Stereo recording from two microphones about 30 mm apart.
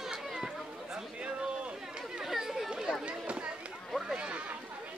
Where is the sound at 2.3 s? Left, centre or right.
Centre.